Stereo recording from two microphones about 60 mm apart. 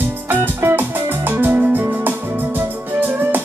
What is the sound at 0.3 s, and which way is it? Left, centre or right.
Music, right.